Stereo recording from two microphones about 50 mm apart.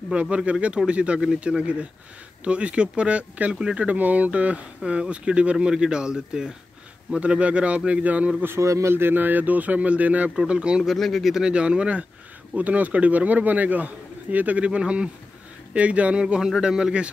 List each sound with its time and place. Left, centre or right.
0.1 s speech: right
1.6 s speech: right
3.5 s speech: centre
3.8 s speech: right; by 6.5 s centre
7.2 s speech: right
8.5 s a man's voice: right
8.9 s a man's voice: right
10.3 s speech: centre
10.8 s speech: centre
11.3 s a man's voice: centre